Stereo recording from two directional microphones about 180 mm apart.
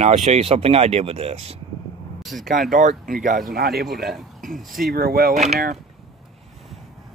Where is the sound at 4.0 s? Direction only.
Centre (ahead or behind).